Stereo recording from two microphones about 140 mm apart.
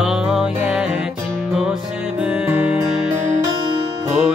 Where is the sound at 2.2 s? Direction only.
10° right (ahead or behind).